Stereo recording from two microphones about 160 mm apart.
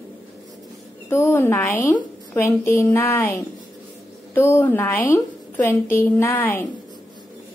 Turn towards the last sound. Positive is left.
turn(degrees=10)  # may be behind; listen again after turning